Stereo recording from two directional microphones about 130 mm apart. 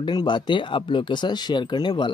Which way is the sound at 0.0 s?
35° left (ahead or behind).